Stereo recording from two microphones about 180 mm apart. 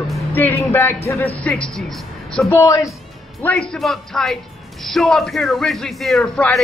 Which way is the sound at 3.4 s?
5° left (ahead or behind).